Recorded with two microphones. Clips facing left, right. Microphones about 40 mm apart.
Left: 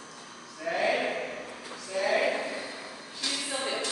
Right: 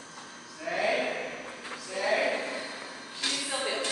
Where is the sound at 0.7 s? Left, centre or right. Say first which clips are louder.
Left 1 dB; centre.